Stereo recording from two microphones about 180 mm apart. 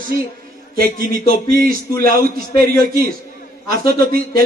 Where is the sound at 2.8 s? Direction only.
55° right (ahead or behind).